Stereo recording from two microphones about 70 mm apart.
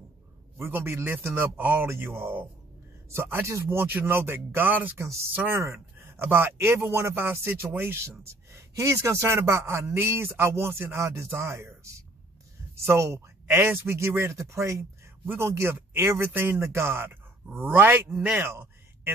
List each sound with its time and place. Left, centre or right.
0.6 s speech: right
4.9 s speech: right
5.3 s speech: right
5.6 s speech: right